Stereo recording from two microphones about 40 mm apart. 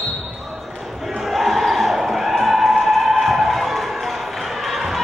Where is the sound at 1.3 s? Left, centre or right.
Centre.